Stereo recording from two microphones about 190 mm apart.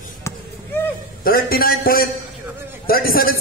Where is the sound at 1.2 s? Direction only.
50° left (ahead or behind).